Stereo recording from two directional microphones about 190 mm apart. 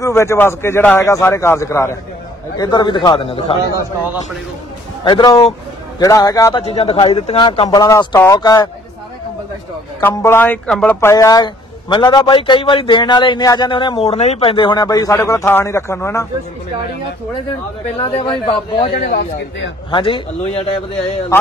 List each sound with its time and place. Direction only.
0.0 s a man's voice: 15° left (ahead or behind)
5.0 s speech: 20° left (ahead or behind)
6.6 s speech: 30° left (ahead or behind)
10.0 s speech: 10° left (ahead or behind)
17.9 s speech: 30° left (ahead or behind)
18.9 s a man's voice: 65° left (ahead or behind)
19.9 s speech: 25° left (ahead or behind)